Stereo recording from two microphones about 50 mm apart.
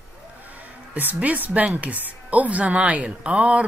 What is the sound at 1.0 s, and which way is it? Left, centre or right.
A woman's voice, right.